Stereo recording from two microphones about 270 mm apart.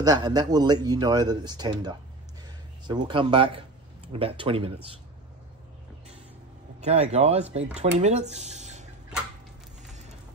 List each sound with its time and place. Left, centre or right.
0.0 s speech: centre
6.8 s speech: right